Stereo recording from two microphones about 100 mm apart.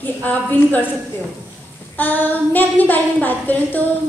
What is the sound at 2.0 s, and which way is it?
A woman's voice, 20° left (ahead or behind).